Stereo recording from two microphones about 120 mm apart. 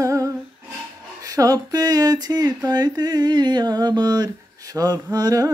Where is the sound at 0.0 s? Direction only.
25° right (ahead or behind).